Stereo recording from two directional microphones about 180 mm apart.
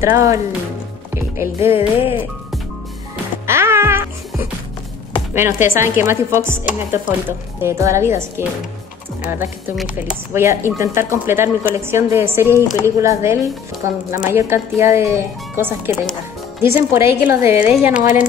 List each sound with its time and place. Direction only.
0.0 s speech: 15° right (ahead or behind)
1.1 s music: 15° right (ahead or behind)
1.7 s music: 30° left (ahead or behind)
3.4 s music: 15° right (ahead or behind)
5.3 s speech: 10° right (ahead or behind)